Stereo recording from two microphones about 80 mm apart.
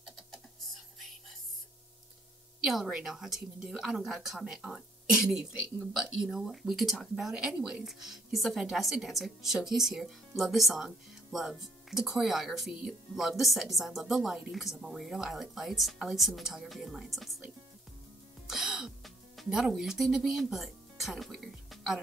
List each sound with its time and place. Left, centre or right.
2.6 s speech: centre
18.5 s music: centre